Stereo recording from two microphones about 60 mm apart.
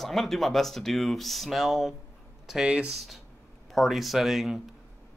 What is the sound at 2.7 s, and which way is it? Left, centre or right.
Speech, centre.